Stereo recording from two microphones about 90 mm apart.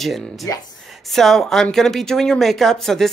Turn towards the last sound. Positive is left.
turn(degrees=5)  # may be behind; listen again after turning